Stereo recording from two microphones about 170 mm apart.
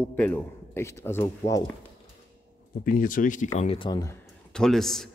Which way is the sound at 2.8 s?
55° left (ahead or behind).